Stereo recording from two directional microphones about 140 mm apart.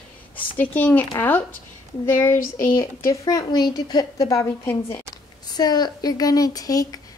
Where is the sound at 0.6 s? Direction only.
10° left (ahead or behind).